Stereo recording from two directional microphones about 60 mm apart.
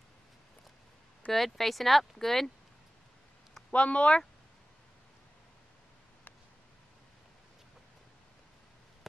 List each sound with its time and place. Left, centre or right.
1.3 s speech: centre
3.7 s speech: left